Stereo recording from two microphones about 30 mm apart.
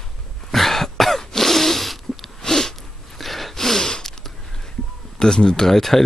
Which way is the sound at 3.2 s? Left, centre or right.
Centre.